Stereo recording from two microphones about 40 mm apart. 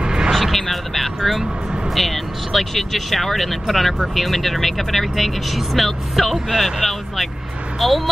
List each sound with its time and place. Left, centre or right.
0.0 s vehicle: centre
0.3 s a sound: centre
2.0 s speech: centre